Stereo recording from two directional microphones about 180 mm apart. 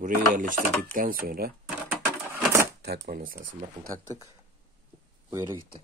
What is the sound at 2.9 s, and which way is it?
Speech, 55° right (ahead or behind).